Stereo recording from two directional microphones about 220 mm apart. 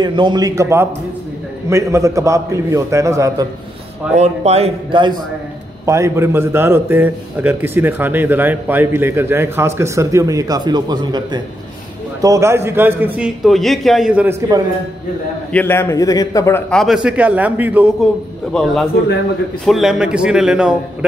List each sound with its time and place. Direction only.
0.0 s a man's voice: 20° right (ahead or behind)
4.1 s a man's voice: 30° right (ahead or behind); by 14.3 s 5° right (ahead or behind)
15.5 s a man's voice: 10° left (ahead or behind)
16.7 s a man's voice: centre (ahead or behind)